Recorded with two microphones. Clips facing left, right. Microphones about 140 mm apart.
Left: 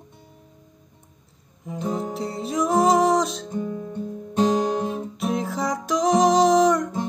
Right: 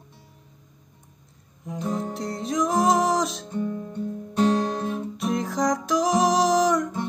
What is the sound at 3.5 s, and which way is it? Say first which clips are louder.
Music: right 1 dB; 15° left (ahead or behind).